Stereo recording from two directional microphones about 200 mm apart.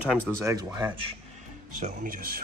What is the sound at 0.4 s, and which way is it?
Speech, 15° right (ahead or behind).